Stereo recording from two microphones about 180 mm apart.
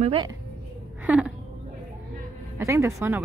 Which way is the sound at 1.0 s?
10° right (ahead or behind).